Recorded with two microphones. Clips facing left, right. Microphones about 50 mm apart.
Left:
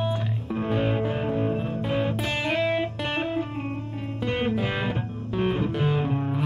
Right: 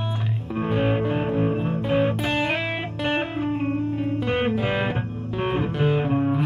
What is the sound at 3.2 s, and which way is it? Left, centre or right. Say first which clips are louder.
Music: right 3 dB; centre.